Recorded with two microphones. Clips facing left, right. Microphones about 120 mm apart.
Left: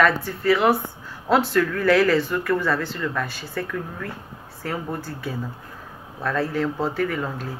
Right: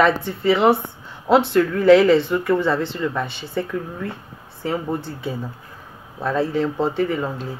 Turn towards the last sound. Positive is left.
turn(degrees=-25)  # may be behind; listen again after turning